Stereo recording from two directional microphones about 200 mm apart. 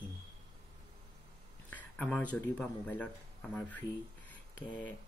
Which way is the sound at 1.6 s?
10° left (ahead or behind).